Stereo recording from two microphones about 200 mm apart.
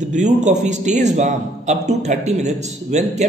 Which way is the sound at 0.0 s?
35° right (ahead or behind).